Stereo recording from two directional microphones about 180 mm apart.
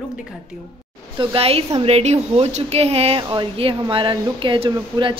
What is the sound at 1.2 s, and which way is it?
A woman's voice, 30° right (ahead or behind).